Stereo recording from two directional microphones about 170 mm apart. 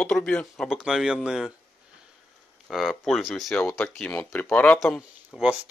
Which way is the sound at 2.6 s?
Centre (ahead or behind).